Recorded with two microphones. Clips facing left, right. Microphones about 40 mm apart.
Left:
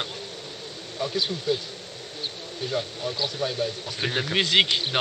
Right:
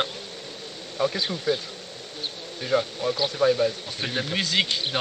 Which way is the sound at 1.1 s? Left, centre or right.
Right.